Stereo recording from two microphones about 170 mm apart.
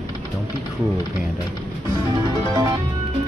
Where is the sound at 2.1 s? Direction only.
20° right (ahead or behind).